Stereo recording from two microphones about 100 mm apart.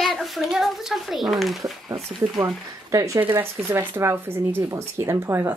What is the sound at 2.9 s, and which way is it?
Speech, 35° right (ahead or behind).